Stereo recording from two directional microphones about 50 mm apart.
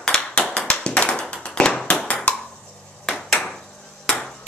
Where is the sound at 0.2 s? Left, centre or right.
Left.